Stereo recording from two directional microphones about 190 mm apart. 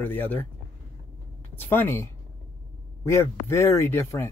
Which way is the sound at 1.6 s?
10° left (ahead or behind).